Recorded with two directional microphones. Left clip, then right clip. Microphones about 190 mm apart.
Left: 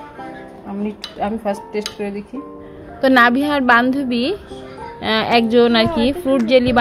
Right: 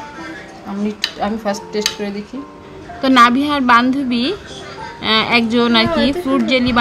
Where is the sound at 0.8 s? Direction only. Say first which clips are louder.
Right 3 dB; 15° left (ahead or behind).